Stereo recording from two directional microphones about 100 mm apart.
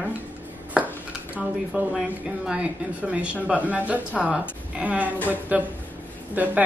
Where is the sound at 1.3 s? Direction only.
10° right (ahead or behind).